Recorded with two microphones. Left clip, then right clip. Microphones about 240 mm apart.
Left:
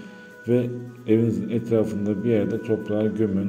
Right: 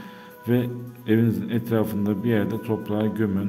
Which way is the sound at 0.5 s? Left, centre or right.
Right.